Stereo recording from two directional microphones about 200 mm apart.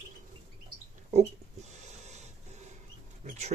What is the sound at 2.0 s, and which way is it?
Printer, 35° right (ahead or behind).